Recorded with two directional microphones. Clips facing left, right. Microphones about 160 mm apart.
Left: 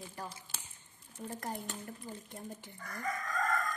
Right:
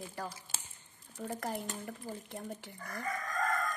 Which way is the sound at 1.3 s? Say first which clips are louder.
Right 3 dB; 80° right.